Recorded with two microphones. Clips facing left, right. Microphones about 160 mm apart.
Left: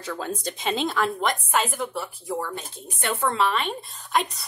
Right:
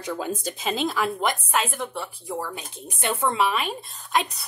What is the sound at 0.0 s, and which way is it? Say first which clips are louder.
Speech: right 2 dB; 15° right (ahead or behind).